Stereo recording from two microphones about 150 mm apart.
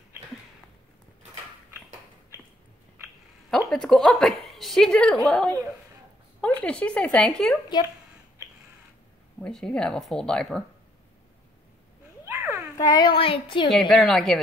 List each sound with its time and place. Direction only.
3.4 s a woman's voice: centre (ahead or behind)
9.4 s speech: 5° left (ahead or behind)
12.3 s a sound: 15° right (ahead or behind)
12.7 s speech: 25° left (ahead or behind)
13.7 s speech: centre (ahead or behind)